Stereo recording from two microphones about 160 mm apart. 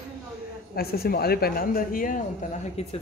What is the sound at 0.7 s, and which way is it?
Speech, 75° left (ahead or behind).